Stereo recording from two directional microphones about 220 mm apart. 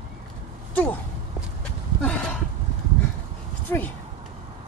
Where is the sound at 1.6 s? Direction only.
5° left (ahead or behind).